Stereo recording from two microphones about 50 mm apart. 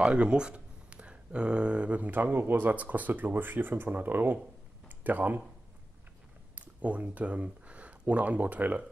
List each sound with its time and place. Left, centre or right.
0.0 s speech: right
4.8 s a sound: right
6.5 s speech: right